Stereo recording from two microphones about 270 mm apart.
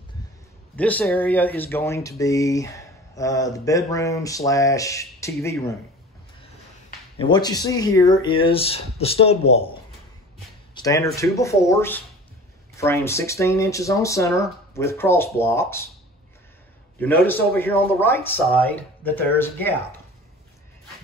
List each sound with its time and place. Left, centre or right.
0.7 s speech: centre
7.2 s speech: centre
10.7 s a sound: centre
11.1 s speech: centre
17.0 s speech: centre